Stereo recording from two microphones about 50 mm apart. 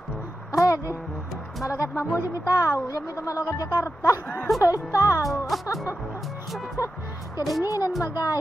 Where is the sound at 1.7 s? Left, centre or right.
Left.